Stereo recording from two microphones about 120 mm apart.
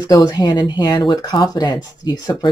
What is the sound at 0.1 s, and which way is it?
Speech, 30° left (ahead or behind).